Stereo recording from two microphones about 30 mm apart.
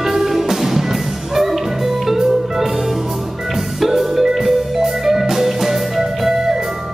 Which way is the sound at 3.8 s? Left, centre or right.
Centre.